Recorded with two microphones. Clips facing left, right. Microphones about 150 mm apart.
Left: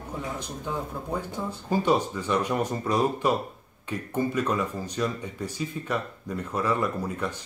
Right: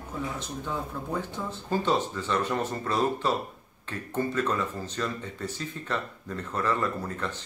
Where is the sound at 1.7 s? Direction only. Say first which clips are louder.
Left 3 dB; 10° left (ahead or behind).